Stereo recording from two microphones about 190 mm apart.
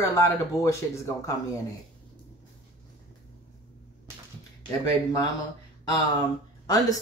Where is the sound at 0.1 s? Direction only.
15° left (ahead or behind).